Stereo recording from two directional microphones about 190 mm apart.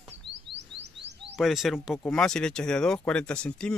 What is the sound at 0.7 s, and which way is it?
Chirp, 65° right (ahead or behind).